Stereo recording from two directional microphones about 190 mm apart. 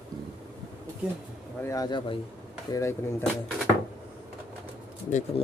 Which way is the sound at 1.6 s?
20° left (ahead or behind).